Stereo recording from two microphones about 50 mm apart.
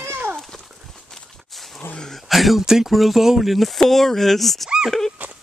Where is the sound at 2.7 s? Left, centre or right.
Centre.